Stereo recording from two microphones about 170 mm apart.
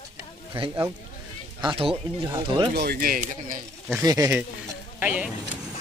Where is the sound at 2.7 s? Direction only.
60° right (ahead or behind).